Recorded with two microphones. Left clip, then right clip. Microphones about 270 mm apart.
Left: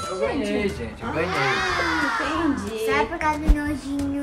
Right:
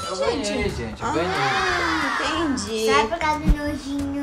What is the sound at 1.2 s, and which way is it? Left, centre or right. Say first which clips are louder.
A child's voice: left 1 dB; centre.